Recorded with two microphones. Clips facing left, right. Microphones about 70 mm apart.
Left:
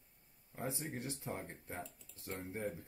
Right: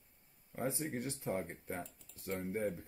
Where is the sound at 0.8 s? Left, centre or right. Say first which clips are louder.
Right 4 dB; right.